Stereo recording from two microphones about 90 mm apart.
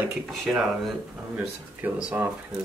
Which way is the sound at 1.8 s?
20° right (ahead or behind).